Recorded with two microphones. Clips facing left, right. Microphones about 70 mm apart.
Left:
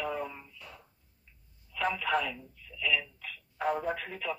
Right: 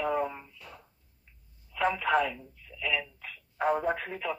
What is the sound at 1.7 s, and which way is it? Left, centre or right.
Speech, right.